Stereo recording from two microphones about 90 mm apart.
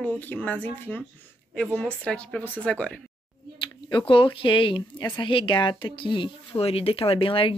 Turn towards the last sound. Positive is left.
turn(degrees=80)